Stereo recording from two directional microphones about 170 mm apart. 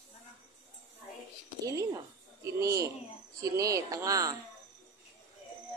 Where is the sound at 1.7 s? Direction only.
20° right (ahead or behind).